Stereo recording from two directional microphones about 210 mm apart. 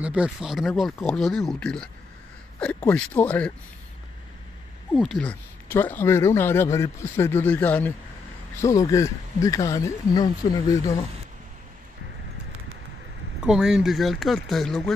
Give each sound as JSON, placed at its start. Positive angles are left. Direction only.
{"t": 0.0, "sound": "speech", "side_deg": -5}
{"t": 4.9, "sound": "speech", "side_deg": 0}
{"t": 13.4, "sound": "speech", "side_deg": -5}